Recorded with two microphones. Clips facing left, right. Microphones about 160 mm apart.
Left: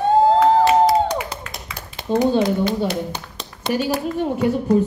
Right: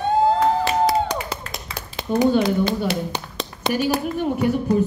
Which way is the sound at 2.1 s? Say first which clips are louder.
Left 1 dB; 25° left (ahead or behind).